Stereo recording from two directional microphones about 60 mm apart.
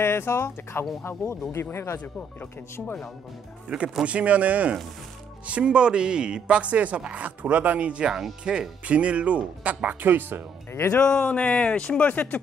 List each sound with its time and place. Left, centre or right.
0.0 s speech: left
3.6 s speech: right
11.0 s speech: centre